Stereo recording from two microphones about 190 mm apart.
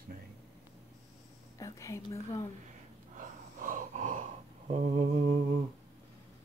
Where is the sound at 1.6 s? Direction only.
15° left (ahead or behind).